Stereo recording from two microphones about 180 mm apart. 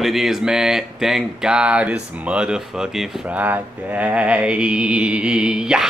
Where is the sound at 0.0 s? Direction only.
Centre (ahead or behind).